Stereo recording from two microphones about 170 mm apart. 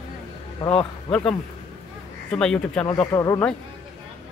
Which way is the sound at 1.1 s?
5° left (ahead or behind).